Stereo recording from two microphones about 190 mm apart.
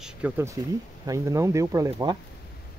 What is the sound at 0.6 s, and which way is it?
Speech, 15° right (ahead or behind).